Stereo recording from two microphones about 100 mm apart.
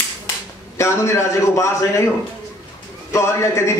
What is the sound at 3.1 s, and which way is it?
Speech, 30° left (ahead or behind).